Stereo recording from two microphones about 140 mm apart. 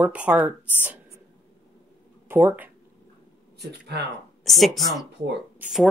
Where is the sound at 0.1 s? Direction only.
10° right (ahead or behind).